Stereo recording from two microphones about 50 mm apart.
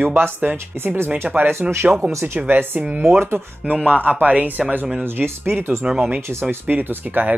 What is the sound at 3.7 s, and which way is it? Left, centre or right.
Speech, right.